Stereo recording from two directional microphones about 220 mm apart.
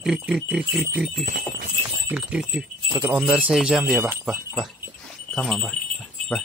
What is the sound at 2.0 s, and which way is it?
Speech, 5° right (ahead or behind).